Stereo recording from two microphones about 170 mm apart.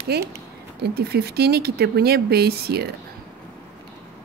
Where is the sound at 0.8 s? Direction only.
65° right (ahead or behind).